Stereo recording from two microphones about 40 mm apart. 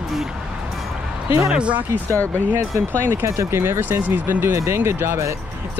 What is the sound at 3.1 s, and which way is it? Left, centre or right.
Speech, right.